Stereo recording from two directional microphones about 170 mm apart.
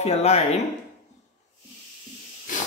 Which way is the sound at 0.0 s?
40° left (ahead or behind).